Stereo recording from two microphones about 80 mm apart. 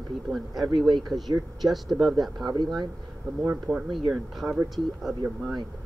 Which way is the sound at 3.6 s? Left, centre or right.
Centre.